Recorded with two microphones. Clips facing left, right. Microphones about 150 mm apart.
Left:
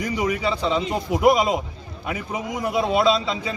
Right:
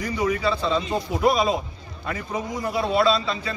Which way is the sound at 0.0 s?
15° left (ahead or behind).